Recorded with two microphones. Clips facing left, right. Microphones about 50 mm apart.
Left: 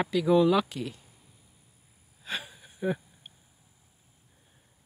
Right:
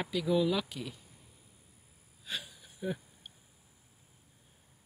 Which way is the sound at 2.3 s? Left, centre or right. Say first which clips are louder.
Left 5 dB; left.